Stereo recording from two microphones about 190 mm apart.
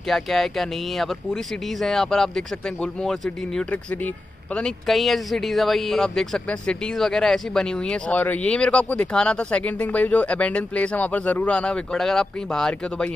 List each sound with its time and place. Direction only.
0.1 s speech: centre (ahead or behind)